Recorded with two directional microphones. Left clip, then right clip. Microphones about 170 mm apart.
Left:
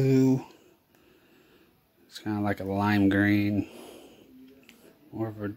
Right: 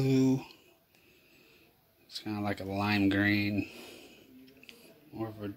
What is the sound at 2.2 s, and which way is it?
Speech, 30° left (ahead or behind).